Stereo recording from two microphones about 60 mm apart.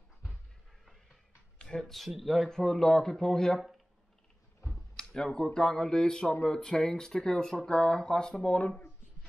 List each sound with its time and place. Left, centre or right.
1.6 s speech: centre
4.9 s speech: centre
8.5 s speech: left